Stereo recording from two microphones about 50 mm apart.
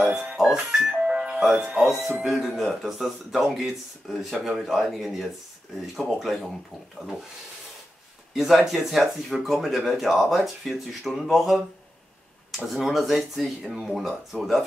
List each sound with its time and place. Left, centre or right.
0.3 s music: centre
1.9 s speech: centre
8.3 s speech: centre
12.7 s speech: centre